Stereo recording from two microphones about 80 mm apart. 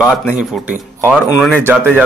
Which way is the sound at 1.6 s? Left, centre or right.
Centre.